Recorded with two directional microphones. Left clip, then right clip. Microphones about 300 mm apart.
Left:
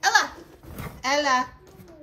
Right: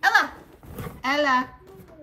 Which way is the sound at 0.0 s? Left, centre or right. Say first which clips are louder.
Right 1 dB; centre.